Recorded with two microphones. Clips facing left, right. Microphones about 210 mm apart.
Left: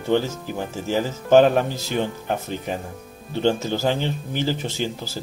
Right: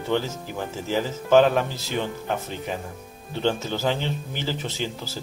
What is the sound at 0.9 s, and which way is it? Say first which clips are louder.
Speech: left 2 dB; 45° left (ahead or behind).